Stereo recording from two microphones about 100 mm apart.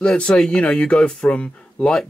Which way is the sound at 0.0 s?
10° left (ahead or behind).